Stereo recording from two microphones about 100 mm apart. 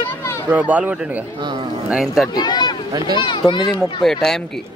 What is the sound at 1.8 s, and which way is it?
Speech, 5° right (ahead or behind).